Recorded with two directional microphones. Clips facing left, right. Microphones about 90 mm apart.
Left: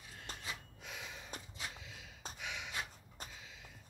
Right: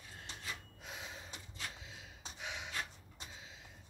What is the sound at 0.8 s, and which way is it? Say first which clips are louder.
Gasp: even; 30° right (ahead or behind).